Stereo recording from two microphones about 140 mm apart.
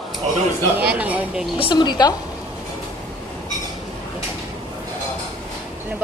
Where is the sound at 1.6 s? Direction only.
35° left (ahead or behind).